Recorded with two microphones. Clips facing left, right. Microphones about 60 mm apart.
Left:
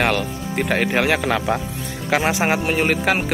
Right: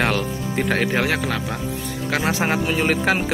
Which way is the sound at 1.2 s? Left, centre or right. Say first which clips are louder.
Left 5 dB; left.